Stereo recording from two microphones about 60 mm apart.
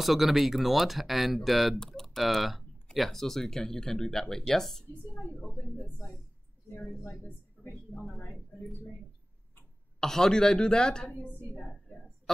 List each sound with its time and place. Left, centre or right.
0.0 s speech: centre
5.4 s a woman's voice: centre
7.6 s a sound: centre
9.9 s a woman's voice: centre
11.1 s a woman's voice: left